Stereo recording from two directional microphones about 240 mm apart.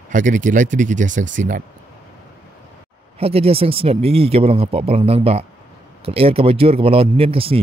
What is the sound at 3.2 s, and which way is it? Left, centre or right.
Speech, right.